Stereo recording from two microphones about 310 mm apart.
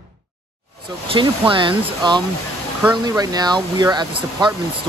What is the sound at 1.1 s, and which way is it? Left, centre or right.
Speech, centre.